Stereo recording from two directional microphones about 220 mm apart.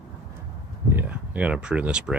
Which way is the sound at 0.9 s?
5° right (ahead or behind).